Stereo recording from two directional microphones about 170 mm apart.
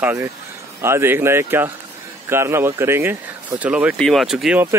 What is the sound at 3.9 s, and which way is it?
Speech, 5° left (ahead or behind).